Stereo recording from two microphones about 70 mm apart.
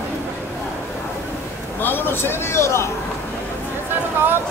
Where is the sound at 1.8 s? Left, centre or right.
Left.